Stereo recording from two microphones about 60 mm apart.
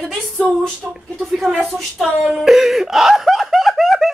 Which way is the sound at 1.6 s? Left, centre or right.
Centre.